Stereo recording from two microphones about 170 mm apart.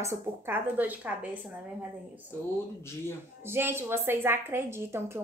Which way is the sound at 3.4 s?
15° right (ahead or behind).